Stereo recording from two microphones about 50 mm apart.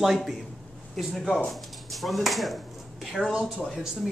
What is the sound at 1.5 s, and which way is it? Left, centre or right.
Chop, centre.